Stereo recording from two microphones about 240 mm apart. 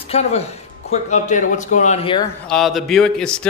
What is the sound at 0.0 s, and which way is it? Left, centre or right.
Speech, left.